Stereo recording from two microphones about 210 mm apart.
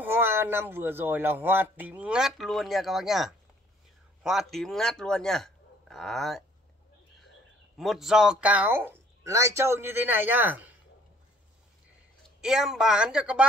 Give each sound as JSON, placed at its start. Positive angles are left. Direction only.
{"t": 0.0, "sound": "speech", "side_deg": -10}
{"t": 7.7, "sound": "speech", "side_deg": 0}
{"t": 12.4, "sound": "speech", "side_deg": -5}